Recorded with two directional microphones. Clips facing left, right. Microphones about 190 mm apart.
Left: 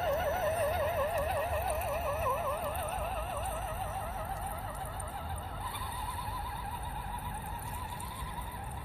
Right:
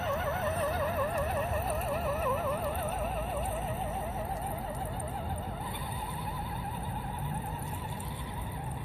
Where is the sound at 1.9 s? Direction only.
Centre (ahead or behind).